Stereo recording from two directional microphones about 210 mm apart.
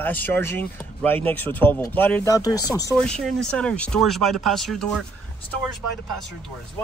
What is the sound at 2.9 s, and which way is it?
Speech, 5° left (ahead or behind).